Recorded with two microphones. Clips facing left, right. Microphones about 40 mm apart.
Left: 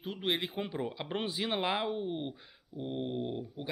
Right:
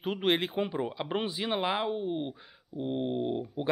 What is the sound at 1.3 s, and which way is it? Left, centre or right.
Speech, centre.